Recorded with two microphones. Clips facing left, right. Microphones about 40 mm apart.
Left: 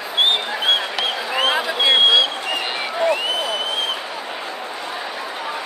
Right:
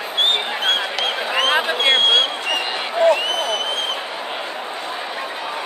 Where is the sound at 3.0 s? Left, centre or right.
Right.